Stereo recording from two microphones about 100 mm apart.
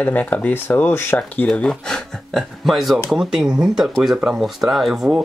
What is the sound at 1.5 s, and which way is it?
Speech, 5° left (ahead or behind).